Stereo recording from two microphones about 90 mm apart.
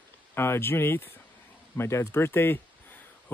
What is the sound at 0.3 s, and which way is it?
Speech, 25° left (ahead or behind).